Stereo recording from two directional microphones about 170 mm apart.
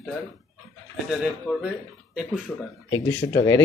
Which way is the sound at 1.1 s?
5° right (ahead or behind).